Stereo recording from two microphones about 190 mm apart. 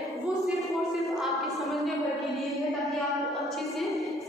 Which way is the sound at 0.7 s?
Centre (ahead or behind).